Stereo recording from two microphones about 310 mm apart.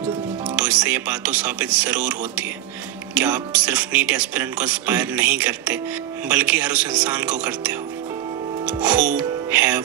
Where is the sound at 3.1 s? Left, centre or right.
Centre.